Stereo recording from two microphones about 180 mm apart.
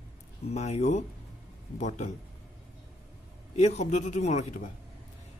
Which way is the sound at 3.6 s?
40° left (ahead or behind).